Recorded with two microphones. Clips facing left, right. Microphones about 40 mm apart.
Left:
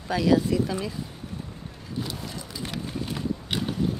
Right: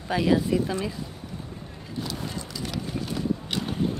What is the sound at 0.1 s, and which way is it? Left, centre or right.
Speech, right.